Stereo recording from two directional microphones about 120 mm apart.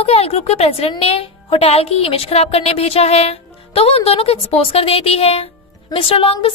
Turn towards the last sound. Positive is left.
turn(degrees=50)  # may be behind; listen again after turning